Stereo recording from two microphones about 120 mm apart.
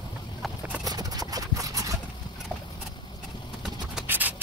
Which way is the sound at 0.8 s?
30° right (ahead or behind).